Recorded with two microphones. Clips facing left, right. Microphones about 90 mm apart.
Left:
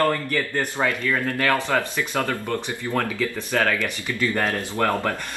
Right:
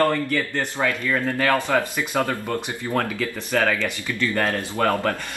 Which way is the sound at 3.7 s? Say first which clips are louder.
Even; 15° left (ahead or behind).